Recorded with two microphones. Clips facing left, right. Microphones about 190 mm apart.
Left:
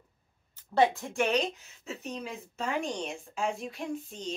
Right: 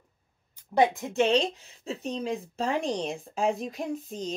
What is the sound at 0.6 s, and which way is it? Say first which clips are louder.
Speech: right 2 dB; 15° right (ahead or behind).